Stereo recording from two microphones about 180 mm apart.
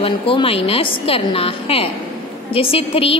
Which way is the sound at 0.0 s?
30° left (ahead or behind).